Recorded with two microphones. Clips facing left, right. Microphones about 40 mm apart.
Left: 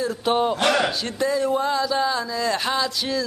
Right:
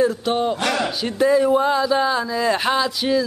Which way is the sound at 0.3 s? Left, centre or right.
Centre.